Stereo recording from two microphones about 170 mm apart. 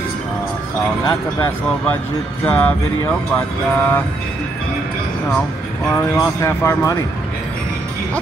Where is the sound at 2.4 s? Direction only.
10° left (ahead or behind).